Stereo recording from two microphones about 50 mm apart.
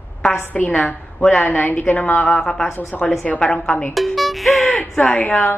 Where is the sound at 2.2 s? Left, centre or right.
Centre.